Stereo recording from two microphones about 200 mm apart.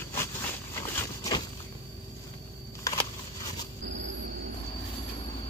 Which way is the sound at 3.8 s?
65° right (ahead or behind).